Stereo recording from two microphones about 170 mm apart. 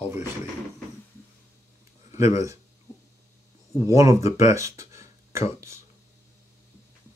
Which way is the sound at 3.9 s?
20° right (ahead or behind).